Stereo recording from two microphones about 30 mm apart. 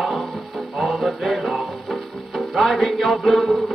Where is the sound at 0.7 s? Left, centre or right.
Centre.